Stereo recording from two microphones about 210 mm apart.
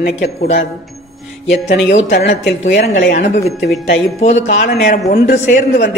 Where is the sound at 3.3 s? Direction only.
30° left (ahead or behind).